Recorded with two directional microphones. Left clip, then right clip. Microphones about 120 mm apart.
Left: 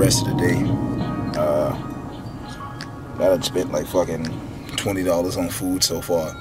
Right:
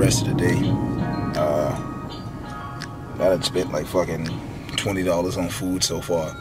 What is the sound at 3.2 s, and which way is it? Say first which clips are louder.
Speech: left 1 dB; 10° left (ahead or behind).